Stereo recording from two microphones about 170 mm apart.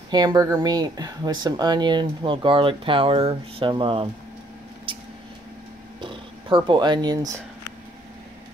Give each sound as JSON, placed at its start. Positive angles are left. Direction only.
{"t": 0.1, "sound": "speech", "side_deg": -25}
{"t": 4.9, "sound": "a sound", "side_deg": -30}
{"t": 5.9, "sound": "speech", "side_deg": -30}